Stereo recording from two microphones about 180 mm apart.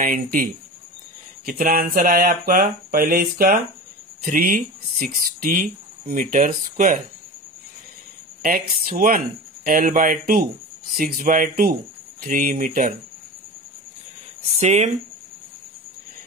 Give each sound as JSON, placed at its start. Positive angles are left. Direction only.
{"t": 0.0, "sound": "speech", "side_deg": -50}
{"t": 8.4, "sound": "speech", "side_deg": -50}
{"t": 14.6, "sound": "speech", "side_deg": -40}